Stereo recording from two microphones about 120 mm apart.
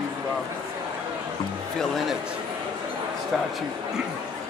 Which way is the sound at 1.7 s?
Centre (ahead or behind).